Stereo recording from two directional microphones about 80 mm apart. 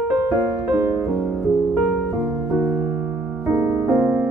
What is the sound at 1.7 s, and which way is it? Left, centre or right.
Music, centre.